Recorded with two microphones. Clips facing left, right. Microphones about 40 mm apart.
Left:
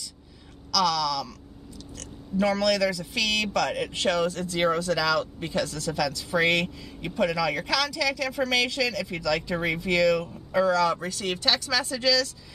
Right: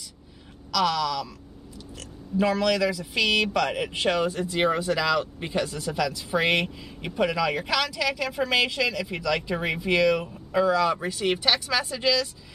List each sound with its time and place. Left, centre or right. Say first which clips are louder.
0.7 s speech: even; centre